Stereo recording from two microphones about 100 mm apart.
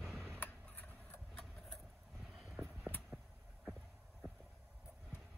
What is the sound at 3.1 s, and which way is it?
Vehicle, 10° right (ahead or behind).